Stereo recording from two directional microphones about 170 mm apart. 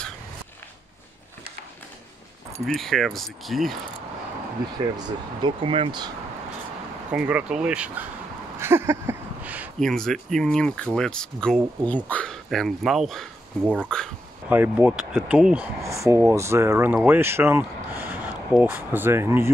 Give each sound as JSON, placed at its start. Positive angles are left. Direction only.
{"t": 2.6, "sound": "speech", "side_deg": 0}
{"t": 4.9, "sound": "speech", "side_deg": -30}
{"t": 7.1, "sound": "speech", "side_deg": -5}
{"t": 8.5, "sound": "a sound", "side_deg": -15}
{"t": 9.8, "sound": "speech", "side_deg": 0}
{"t": 14.5, "sound": "speech", "side_deg": -10}